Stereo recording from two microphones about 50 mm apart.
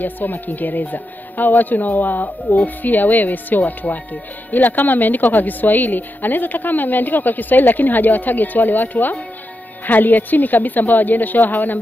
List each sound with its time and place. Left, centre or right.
0.0 s speech: left